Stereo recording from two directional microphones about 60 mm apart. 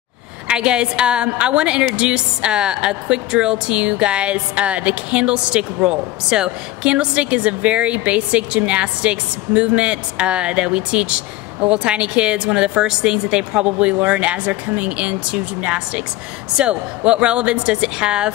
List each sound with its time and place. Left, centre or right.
0.5 s a woman's voice: centre